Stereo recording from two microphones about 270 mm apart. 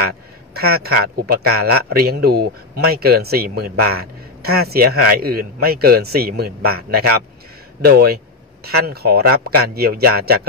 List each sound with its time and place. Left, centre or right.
0.6 s a man's voice: right